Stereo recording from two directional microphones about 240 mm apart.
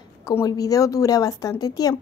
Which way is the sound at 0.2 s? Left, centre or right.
Centre.